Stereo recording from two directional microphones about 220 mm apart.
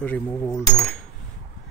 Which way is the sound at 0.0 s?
5° left (ahead or behind).